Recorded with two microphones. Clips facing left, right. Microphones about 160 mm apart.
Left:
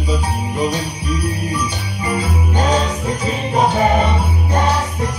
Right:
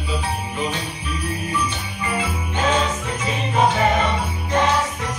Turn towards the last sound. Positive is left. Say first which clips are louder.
# left 2 dB
turn(degrees=35)  # may be behind; listen again after turning